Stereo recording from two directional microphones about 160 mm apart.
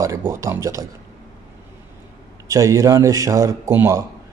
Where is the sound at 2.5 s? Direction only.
20° right (ahead or behind).